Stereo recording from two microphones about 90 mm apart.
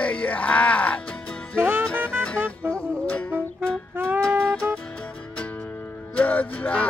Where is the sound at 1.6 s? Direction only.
25° right (ahead or behind).